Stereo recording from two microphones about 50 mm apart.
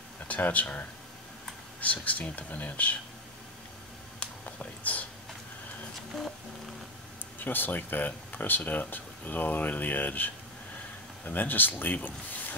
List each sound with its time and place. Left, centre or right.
0.3 s speech: left
4.5 s a sound: left
7.3 s speech: left